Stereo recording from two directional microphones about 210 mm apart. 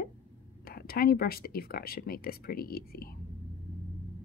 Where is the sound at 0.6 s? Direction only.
45° left (ahead or behind).